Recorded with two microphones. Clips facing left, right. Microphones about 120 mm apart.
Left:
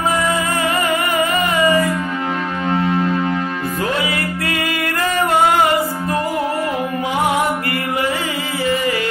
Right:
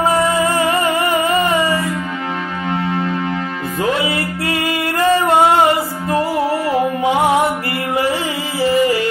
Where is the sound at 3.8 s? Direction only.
25° right (ahead or behind).